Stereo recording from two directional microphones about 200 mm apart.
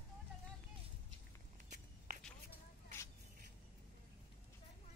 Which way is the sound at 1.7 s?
40° right (ahead or behind).